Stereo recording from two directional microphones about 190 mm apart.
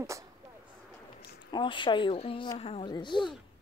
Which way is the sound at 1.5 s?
25° left (ahead or behind).